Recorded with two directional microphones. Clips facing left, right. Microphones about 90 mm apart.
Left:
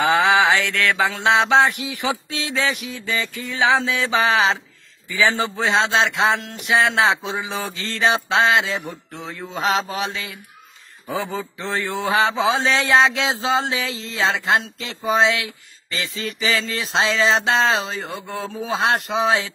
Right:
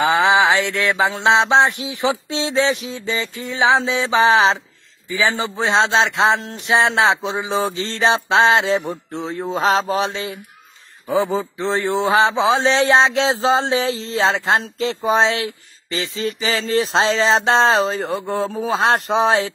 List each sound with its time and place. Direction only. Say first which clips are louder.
0.0 s a man's voice: right 2 dB; 20° right (ahead or behind); by 19.5 s 35° right (ahead or behind)